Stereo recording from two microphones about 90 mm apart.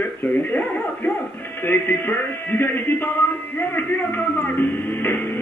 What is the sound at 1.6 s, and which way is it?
Music, 20° left (ahead or behind).